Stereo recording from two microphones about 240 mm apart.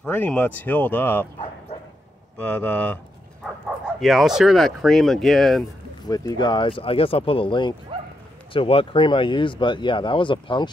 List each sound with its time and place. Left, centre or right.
0.0 s speech: centre
6.0 s speech: centre